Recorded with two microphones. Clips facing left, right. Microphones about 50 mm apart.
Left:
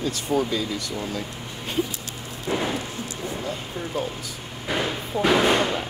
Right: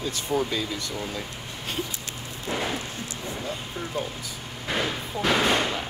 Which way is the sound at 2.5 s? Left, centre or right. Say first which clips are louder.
Left 4 dB; left.